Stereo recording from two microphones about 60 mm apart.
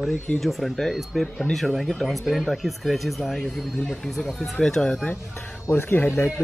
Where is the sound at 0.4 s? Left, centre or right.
Centre.